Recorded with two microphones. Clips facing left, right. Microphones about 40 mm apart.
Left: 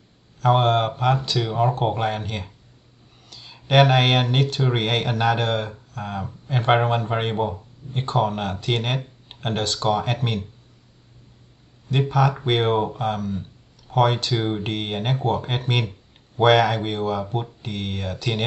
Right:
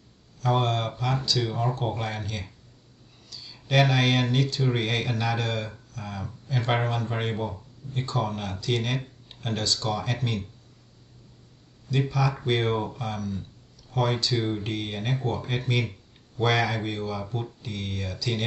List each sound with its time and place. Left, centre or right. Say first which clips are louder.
0.4 s speech: left 7 dB; left
11.9 s speech: left 6 dB; left